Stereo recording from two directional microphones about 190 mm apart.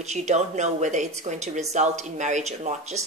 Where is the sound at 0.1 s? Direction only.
35° right (ahead or behind).